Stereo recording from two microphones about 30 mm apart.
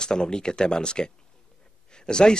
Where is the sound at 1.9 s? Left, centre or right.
Left.